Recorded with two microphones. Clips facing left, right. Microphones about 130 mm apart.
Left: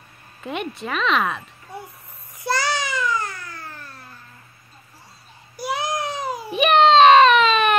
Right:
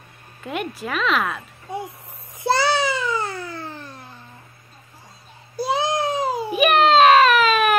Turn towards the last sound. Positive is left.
turn(degrees=-5)  # may be behind; listen again after turning